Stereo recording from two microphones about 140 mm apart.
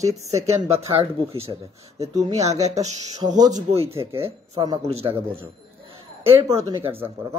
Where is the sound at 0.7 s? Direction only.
45° right (ahead or behind).